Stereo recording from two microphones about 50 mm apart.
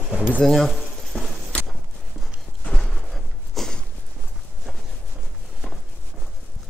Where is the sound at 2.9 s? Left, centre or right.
Centre.